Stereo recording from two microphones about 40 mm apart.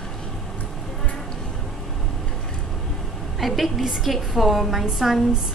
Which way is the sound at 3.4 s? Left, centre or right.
Centre.